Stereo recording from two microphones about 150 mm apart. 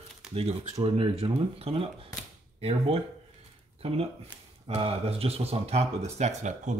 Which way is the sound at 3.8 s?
40° right (ahead or behind).